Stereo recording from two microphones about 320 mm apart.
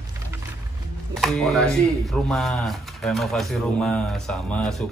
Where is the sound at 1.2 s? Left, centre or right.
Centre.